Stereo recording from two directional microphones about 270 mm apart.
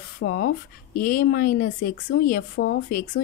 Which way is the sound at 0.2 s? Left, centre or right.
Left.